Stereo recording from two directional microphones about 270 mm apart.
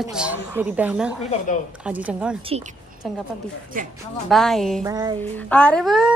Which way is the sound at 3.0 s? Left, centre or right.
Centre.